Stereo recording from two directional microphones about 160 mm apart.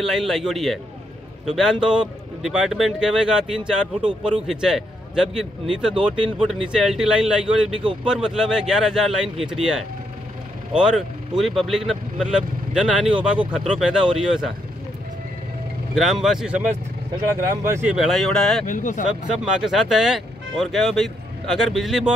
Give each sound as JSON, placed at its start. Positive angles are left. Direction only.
{"t": 0.0, "sound": "speech", "side_deg": 0}
{"t": 15.9, "sound": "speech", "side_deg": 0}
{"t": 17.5, "sound": "speech", "side_deg": -15}
{"t": 17.9, "sound": "speech", "side_deg": 0}
{"t": 18.7, "sound": "speech", "side_deg": 55}
{"t": 19.0, "sound": "speech", "side_deg": -5}